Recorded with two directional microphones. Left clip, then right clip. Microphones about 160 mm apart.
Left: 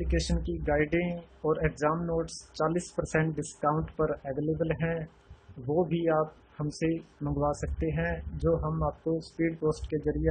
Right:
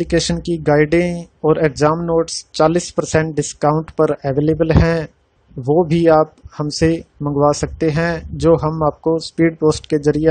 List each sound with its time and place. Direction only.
0.1 s speech: 65° right (ahead or behind)